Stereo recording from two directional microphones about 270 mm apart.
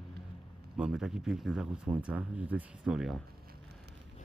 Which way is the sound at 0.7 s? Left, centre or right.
Centre.